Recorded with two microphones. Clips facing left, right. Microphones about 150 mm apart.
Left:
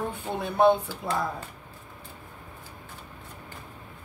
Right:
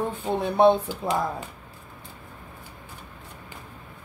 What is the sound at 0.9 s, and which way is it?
Speech, 15° right (ahead or behind).